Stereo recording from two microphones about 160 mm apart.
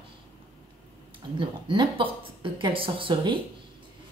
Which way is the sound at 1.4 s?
30° right (ahead or behind).